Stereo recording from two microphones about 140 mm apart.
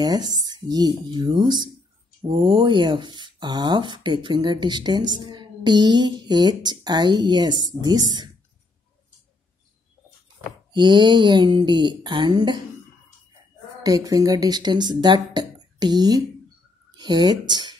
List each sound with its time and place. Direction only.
0.0 s speech: 30° right (ahead or behind)
10.7 s speech: 35° right (ahead or behind)
13.8 s speech: 25° right (ahead or behind)